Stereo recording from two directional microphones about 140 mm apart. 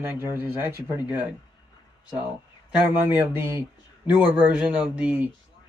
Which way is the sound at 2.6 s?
15° right (ahead or behind).